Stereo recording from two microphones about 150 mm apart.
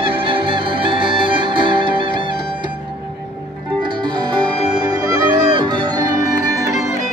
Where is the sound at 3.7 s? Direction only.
30° right (ahead or behind).